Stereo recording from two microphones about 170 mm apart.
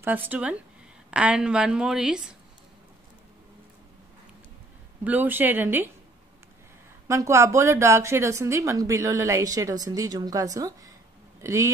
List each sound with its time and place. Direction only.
0.0 s a woman's voice: 10° right (ahead or behind)
5.0 s speech: 10° right (ahead or behind)
7.1 s a woman's voice: 15° right (ahead or behind)